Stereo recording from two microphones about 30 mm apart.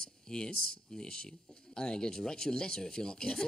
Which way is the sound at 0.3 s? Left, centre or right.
Left.